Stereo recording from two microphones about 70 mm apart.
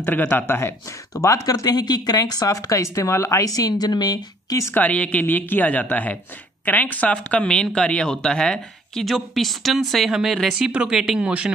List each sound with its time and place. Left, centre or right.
0.0 s speech: left
1.2 s speech: left
4.7 s speech: centre
10.7 s speech: centre